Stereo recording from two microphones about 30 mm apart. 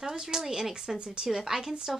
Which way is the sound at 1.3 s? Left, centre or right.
Centre.